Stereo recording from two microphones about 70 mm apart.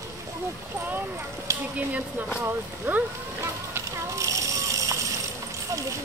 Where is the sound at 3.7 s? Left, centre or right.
Right.